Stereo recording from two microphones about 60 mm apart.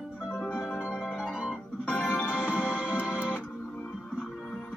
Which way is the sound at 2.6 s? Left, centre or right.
Centre.